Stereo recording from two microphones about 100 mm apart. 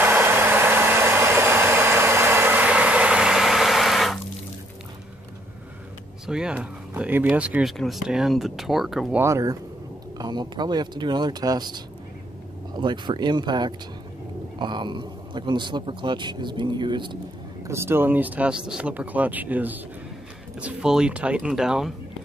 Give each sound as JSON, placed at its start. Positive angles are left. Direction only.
{"t": 0.0, "sound": "hair dryer", "side_deg": -20}
{"t": 6.2, "sound": "a sound", "side_deg": -5}
{"t": 7.0, "sound": "speech", "side_deg": -15}
{"t": 7.6, "sound": "speech", "side_deg": 0}
{"t": 9.2, "sound": "speech", "side_deg": -35}
{"t": 10.1, "sound": "a man's voice", "side_deg": -45}
{"t": 17.6, "sound": "speech", "side_deg": -25}